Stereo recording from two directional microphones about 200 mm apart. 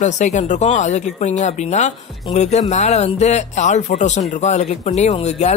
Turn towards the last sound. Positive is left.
turn(degrees=35)  # may be behind; listen again after turning